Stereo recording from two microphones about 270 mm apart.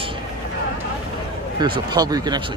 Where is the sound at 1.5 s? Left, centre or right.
Centre.